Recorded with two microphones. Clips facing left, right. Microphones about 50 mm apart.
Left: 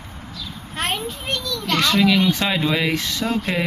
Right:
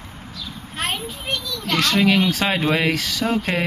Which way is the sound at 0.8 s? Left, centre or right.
Centre.